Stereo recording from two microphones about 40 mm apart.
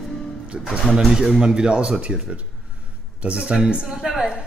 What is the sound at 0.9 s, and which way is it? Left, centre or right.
Speech, centre.